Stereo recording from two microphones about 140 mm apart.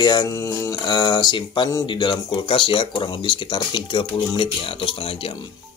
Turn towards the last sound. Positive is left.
turn(degrees=40)  # may be behind; listen again after turning